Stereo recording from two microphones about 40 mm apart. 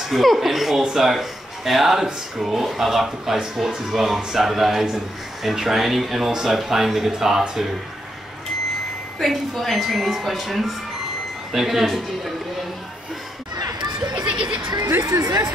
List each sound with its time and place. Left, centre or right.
0.1 s speech: centre
9.2 s speech: centre
14.1 s a sound: right
15.1 s speech: right